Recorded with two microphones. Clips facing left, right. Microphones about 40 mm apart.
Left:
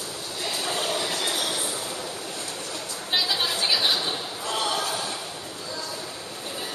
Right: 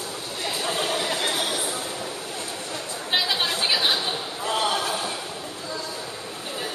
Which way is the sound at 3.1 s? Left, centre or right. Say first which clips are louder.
Right 1 dB; centre.